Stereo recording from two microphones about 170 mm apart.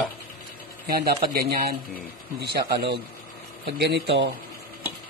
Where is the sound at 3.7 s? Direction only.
85° right.